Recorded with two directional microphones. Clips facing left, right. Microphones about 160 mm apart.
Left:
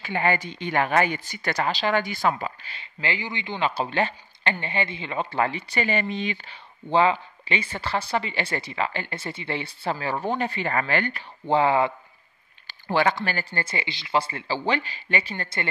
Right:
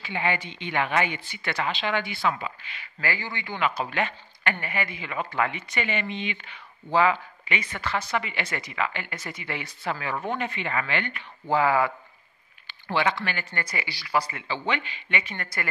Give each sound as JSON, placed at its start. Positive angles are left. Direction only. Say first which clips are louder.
{"t": 0.0, "sound": "a woman's voice", "louder": "left 4 dB", "side_deg": 45}
{"t": 11.4, "sound": "speech", "louder": "left 2 dB", "side_deg": 25}
{"t": 12.6, "sound": "a woman's voice", "louder": "left 3 dB", "side_deg": 40}